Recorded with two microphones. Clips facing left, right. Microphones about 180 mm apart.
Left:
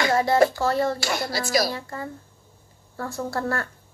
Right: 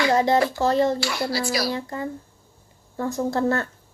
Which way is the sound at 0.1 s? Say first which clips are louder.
Right 2 dB; 20° right (ahead or behind).